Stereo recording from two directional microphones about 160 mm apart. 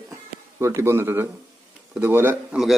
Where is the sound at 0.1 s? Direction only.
20° right (ahead or behind).